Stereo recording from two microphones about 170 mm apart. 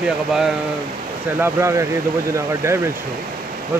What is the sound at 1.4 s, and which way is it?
Speech, 15° right (ahead or behind).